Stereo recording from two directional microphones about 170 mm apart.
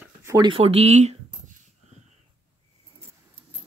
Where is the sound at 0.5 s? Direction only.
35° right (ahead or behind).